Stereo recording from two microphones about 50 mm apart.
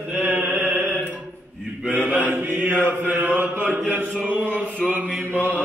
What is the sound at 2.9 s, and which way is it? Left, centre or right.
Mantra, right.